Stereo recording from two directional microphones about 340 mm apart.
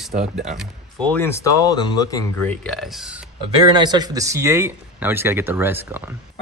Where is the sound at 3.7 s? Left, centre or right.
Centre.